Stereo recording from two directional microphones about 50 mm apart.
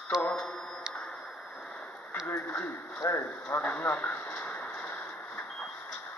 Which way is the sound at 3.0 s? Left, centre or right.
Left.